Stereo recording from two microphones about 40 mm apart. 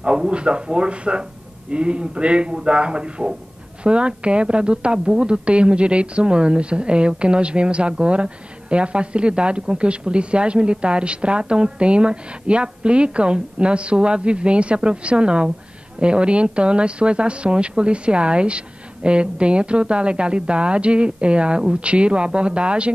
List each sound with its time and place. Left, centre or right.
0.0 s a woman's voice: right